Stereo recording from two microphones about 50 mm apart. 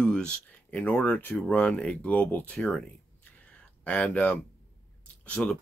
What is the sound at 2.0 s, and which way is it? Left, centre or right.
Speech, left.